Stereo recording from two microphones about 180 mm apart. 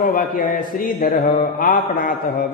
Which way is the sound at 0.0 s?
50° left (ahead or behind).